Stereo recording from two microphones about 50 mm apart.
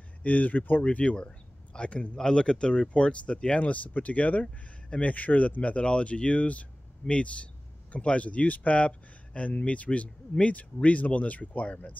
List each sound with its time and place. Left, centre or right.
0.2 s speech: left
4.8 s a sound: centre
5.1 s speech: left